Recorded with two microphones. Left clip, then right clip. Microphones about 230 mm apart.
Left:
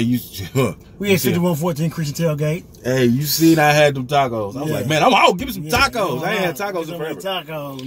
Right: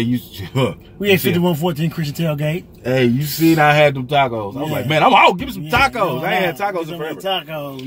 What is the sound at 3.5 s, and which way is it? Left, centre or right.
Speech, centre.